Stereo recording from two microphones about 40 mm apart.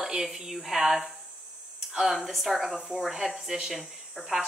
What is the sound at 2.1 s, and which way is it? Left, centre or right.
A woman's voice, centre.